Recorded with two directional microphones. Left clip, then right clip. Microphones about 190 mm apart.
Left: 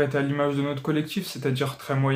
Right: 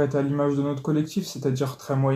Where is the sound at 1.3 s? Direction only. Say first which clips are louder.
Even; 25° left (ahead or behind).